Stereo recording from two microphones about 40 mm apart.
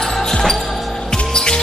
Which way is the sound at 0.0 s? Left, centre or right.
Centre.